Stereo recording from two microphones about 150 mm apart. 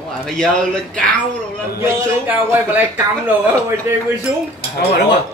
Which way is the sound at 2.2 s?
10° right (ahead or behind).